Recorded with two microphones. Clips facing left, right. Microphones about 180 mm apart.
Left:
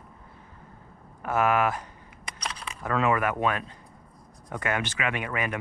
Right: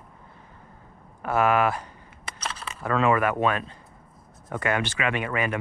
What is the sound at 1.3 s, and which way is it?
Speech, 15° left (ahead or behind).